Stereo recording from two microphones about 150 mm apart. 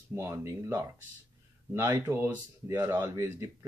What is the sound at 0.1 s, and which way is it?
Speech, 20° right (ahead or behind).